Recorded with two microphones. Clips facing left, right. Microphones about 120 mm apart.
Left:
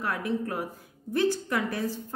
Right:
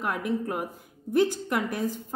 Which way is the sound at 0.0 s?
15° right (ahead or behind).